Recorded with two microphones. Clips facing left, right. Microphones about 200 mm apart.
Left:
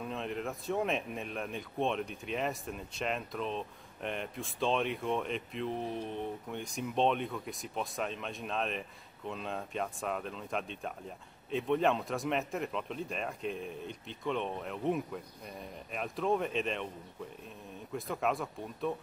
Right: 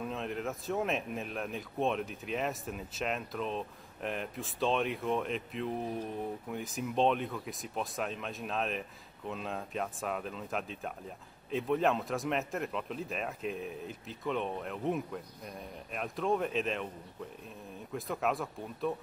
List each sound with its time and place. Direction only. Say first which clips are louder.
0.0 s speech: right 1 dB; centre (ahead or behind)
17.9 s speech: even; centre (ahead or behind)